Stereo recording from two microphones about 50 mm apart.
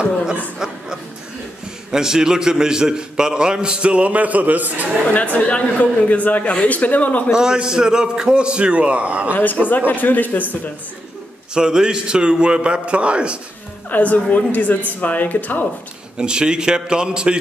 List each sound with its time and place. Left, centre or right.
0.6 s a sound: centre
1.9 s a man's voice: centre; by 4.8 s right
5.1 s speech: left
7.3 s a man's voice: centre
9.3 s speech: left
11.5 s a man's voice: centre
13.8 s speech: left
16.2 s a man's voice: centre